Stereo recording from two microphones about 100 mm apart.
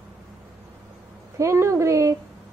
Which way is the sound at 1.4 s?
30° right (ahead or behind).